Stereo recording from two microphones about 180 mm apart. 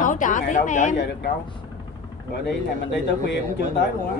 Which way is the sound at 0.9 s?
70° left (ahead or behind).